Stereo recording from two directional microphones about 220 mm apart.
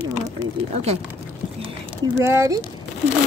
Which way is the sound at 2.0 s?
10° right (ahead or behind).